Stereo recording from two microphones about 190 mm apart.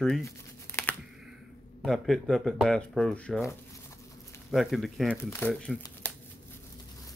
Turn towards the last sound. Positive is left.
turn(degrees=0)  # may be behind; listen again after turning